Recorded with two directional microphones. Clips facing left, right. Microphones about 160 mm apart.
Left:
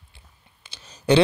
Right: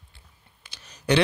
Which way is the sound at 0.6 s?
25° left (ahead or behind).